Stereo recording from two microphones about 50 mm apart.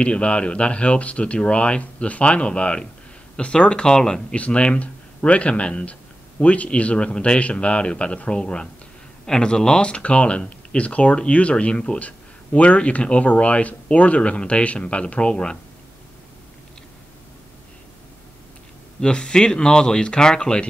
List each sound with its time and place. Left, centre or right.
0.0 s speech: left
18.9 s speech: centre